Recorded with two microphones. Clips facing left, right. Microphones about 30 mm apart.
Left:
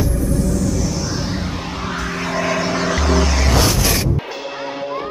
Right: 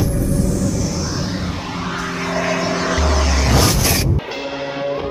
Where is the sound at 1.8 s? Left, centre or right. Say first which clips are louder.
Right 1 dB; centre.